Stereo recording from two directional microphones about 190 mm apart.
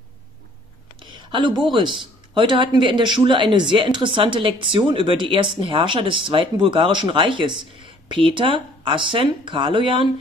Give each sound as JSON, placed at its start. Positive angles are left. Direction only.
{"t": 0.9, "sound": "speech", "side_deg": -25}